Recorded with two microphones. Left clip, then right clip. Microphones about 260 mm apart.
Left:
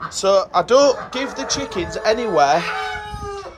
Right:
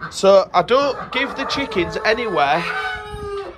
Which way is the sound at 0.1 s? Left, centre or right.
Centre.